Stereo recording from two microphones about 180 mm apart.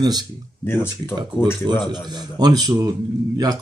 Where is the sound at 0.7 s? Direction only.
10° left (ahead or behind).